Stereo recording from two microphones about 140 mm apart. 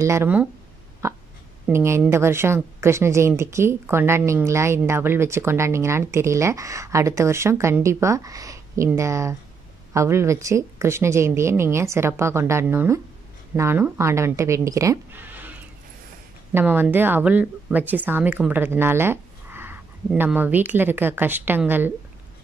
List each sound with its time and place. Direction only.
0.0 s a woman's voice: 20° right (ahead or behind)